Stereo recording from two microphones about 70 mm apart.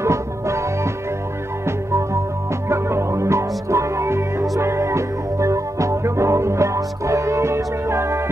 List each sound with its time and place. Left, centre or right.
0.0 s music: right
2.7 s music: right